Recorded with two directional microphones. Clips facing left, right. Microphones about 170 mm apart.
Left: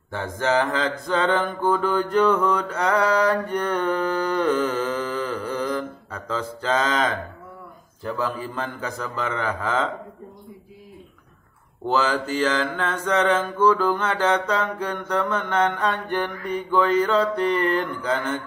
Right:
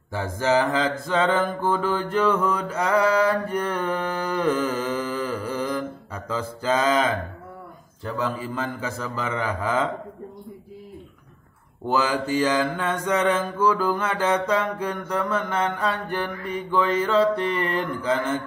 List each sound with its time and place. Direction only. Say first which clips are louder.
0.1 s mantra: right 1 dB; 10° right (ahead or behind)
11.9 s mantra: even; 10° right (ahead or behind)